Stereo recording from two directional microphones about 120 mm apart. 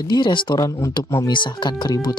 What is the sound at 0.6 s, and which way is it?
Speech, 25° left (ahead or behind).